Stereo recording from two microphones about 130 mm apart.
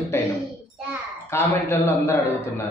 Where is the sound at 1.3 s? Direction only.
20° left (ahead or behind).